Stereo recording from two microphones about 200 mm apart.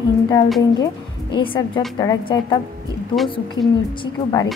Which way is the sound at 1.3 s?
25° left (ahead or behind).